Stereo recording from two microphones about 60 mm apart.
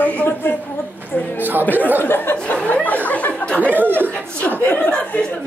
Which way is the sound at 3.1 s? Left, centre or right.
Left.